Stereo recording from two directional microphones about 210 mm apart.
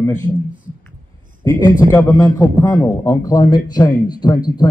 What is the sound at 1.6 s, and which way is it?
A man's voice, 15° left (ahead or behind).